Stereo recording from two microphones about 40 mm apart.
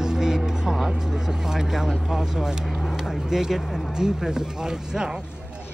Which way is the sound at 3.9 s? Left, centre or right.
Centre.